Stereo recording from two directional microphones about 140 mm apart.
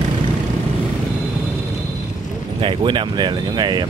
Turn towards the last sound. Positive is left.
turn(degrees=-30)  # may be behind; listen again after turning